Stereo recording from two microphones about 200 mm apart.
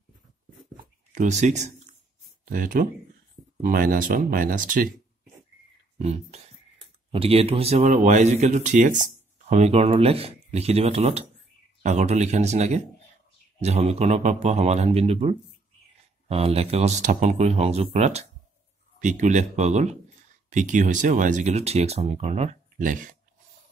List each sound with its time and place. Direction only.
1.1 s speech: 35° right (ahead or behind)
5.9 s speech: 30° right (ahead or behind)